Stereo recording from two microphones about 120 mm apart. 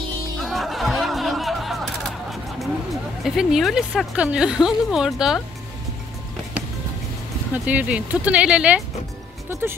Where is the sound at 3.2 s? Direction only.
Centre (ahead or behind).